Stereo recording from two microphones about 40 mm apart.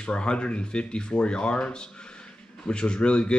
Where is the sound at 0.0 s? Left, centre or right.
Left.